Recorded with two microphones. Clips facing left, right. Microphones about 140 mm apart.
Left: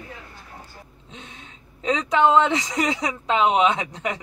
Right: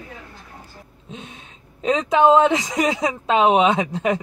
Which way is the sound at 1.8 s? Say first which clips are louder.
Right 3 dB; 25° right (ahead or behind).